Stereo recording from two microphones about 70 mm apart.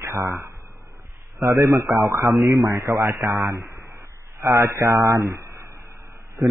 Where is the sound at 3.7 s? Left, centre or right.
Right.